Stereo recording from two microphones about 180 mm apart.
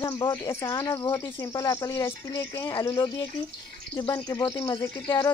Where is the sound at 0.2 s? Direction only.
20° left (ahead or behind).